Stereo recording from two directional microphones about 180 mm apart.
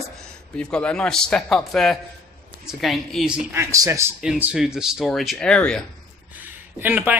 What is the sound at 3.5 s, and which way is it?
Speech, 15° right (ahead or behind).